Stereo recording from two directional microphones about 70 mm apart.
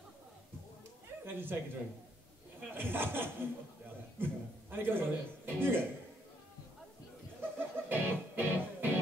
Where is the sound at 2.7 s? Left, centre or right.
Right.